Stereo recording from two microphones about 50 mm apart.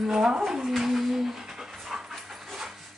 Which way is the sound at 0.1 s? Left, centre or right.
Centre.